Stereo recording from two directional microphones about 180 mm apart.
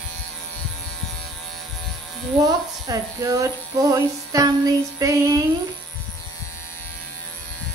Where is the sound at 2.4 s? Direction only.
20° right (ahead or behind).